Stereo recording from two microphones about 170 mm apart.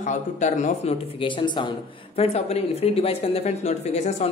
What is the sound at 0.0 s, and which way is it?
Speech, 45° left (ahead or behind).